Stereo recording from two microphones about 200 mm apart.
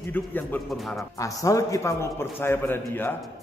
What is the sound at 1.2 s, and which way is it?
A man's voice, 15° left (ahead or behind).